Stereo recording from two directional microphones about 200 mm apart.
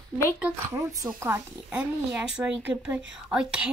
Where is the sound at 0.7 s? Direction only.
10° right (ahead or behind).